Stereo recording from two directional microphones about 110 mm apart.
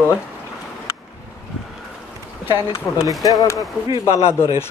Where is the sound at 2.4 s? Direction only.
55° left (ahead or behind).